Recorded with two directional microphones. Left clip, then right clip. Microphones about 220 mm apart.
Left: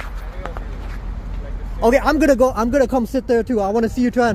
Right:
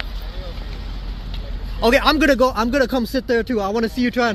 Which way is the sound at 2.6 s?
15° left (ahead or behind).